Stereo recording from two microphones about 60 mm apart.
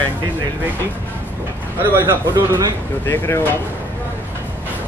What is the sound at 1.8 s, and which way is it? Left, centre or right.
Speech, right.